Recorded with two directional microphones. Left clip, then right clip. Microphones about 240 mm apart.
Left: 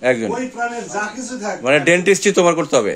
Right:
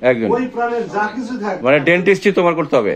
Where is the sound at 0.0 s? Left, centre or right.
Centre.